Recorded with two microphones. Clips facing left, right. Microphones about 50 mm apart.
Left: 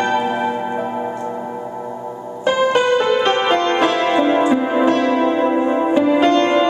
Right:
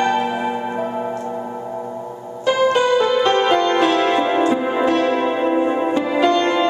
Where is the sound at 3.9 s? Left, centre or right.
Centre.